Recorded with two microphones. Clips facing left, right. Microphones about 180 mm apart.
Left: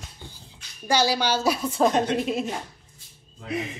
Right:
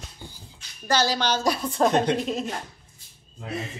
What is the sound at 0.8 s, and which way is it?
A woman's voice, 10° left (ahead or behind).